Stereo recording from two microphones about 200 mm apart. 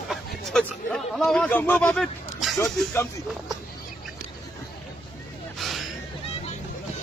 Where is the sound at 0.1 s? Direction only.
5° left (ahead or behind).